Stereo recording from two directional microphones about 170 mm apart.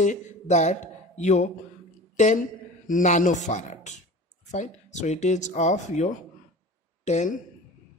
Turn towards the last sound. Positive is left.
turn(degrees=45)  # may be behind; listen again after turning